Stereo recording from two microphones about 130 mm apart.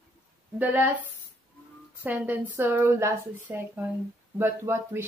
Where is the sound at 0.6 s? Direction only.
15° right (ahead or behind).